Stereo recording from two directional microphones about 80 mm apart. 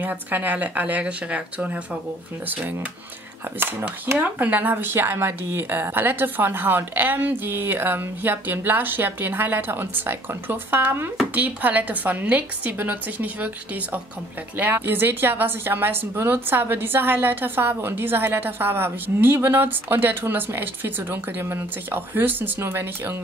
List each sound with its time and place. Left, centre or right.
0.0 s a woman's voice: right